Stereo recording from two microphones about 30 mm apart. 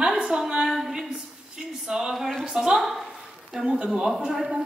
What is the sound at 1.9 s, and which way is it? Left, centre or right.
A woman's voice, right.